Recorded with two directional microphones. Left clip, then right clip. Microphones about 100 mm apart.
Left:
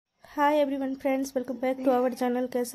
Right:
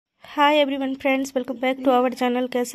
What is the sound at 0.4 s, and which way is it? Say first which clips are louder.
A woman's voice: right 6 dB; 30° right (ahead or behind).